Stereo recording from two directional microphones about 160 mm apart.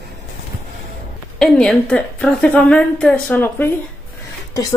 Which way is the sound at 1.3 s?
5° left (ahead or behind).